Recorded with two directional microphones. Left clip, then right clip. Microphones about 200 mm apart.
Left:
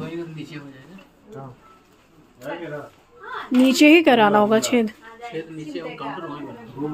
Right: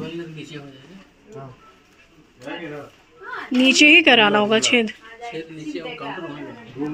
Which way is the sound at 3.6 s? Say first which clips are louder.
Right 2 dB; 10° left (ahead or behind).